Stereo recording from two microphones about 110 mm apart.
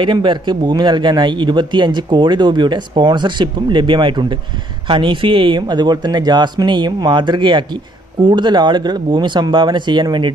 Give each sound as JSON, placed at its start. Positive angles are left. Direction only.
{"t": 0.0, "sound": "speech", "side_deg": -45}